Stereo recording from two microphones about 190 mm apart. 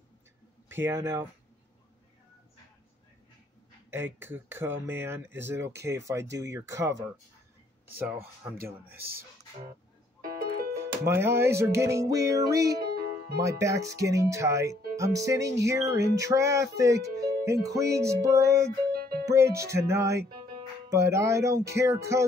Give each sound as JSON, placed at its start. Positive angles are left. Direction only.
{"t": 0.7, "sound": "speech", "side_deg": -10}
{"t": 3.9, "sound": "speech", "side_deg": -10}
{"t": 10.2, "sound": "music", "side_deg": -50}
{"t": 10.8, "sound": "speech", "side_deg": -15}
{"t": 18.9, "sound": "music", "side_deg": -50}
{"t": 19.2, "sound": "speech", "side_deg": -15}